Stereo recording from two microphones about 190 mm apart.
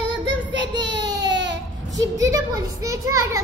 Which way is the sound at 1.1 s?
65° right (ahead or behind).